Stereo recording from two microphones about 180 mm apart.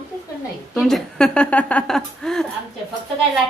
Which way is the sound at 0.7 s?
Centre (ahead or behind).